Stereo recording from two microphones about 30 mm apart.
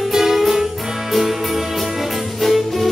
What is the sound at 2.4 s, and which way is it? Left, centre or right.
Music, centre.